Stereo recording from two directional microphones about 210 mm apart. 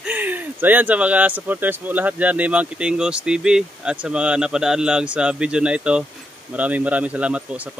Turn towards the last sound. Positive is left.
turn(degrees=-5)  # may be behind; listen again after turning